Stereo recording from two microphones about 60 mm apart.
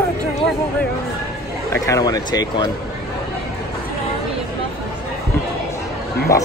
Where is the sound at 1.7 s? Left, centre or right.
Left.